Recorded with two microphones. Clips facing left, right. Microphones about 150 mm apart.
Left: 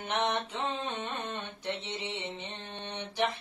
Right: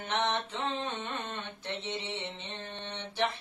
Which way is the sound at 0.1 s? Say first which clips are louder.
Left 1 dB; 15° left (ahead or behind).